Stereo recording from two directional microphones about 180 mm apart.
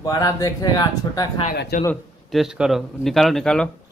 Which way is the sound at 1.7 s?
55° left (ahead or behind).